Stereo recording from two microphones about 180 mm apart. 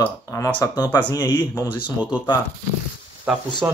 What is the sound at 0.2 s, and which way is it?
Speech, 20° left (ahead or behind).